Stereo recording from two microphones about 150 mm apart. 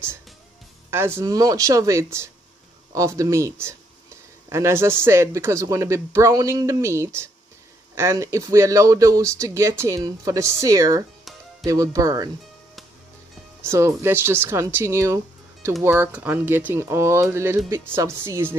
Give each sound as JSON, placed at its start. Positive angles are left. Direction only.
{"t": 0.8, "sound": "speech", "side_deg": -15}
{"t": 13.7, "sound": "speech", "side_deg": -20}